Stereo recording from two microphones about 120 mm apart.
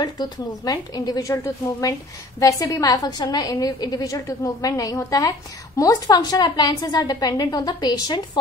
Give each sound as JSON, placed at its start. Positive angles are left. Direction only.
{"t": 0.0, "sound": "a woman's voice", "side_deg": 35}